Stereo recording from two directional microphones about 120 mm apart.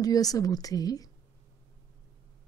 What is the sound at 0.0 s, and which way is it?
A woman's voice, 30° left (ahead or behind).